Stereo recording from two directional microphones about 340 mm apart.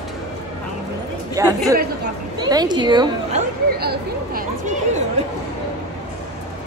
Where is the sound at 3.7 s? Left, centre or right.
Right.